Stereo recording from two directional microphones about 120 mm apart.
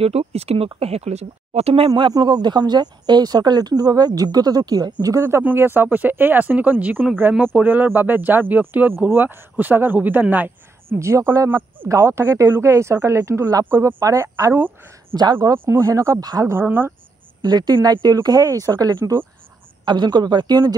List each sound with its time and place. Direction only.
0.0 s speech: 60° right (ahead or behind)
2.0 s speech: 35° right (ahead or behind)
5.2 s speech: 15° right (ahead or behind)
16.5 s speech: 15° right (ahead or behind)
17.4 s speech: 35° right (ahead or behind)